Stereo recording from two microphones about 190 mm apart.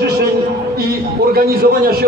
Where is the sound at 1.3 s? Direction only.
50° right (ahead or behind).